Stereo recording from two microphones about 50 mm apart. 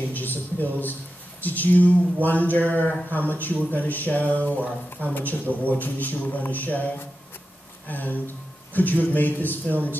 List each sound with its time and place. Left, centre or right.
0.1 s a man's voice: left
7.9 s a man's voice: left